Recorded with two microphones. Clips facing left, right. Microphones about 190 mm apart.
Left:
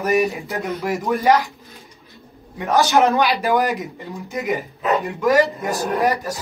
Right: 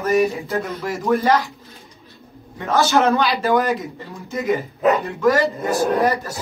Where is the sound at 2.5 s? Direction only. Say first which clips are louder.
Left 1 dB; 15° left (ahead or behind).